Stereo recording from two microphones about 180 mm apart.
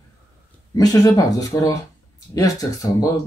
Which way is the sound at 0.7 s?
20° left (ahead or behind).